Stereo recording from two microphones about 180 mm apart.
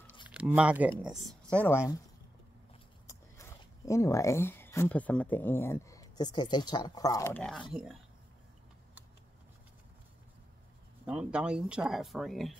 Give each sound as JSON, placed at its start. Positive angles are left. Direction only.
{"t": 0.3, "sound": "speech", "side_deg": -5}
{"t": 3.1, "sound": "speech", "side_deg": 15}
{"t": 7.7, "sound": "speech", "side_deg": -5}
{"t": 11.1, "sound": "speech", "side_deg": -5}